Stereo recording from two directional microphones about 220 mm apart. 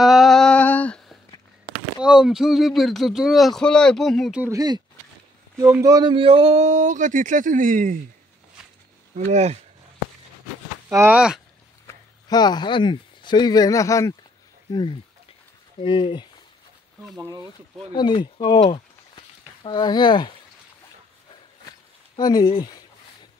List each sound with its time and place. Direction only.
0.0 s humming: centre (ahead or behind)
2.0 s speech: centre (ahead or behind); by 8.0 s 35° right (ahead or behind)
9.1 s speech: 30° right (ahead or behind)
10.9 s speech: 10° right (ahead or behind)
11.9 s speech: 20° left (ahead or behind)
17.9 s speech: 20° left (ahead or behind)
22.1 s speech: 20° left (ahead or behind)